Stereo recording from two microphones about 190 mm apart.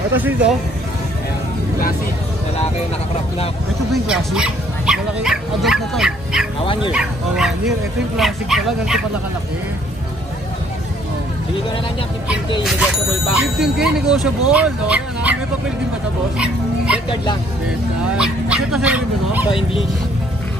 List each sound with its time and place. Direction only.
0.1 s speech: 10° right (ahead or behind)
3.9 s speech: 5° right (ahead or behind)
6.6 s speech: 25° left (ahead or behind)
6.9 s speech: 5° right (ahead or behind)
13.4 s speech: 5° right (ahead or behind)
16.3 s speech: 5° right (ahead or behind)
18.0 s speech: 5° right (ahead or behind)
19.5 s speech: 30° left (ahead or behind)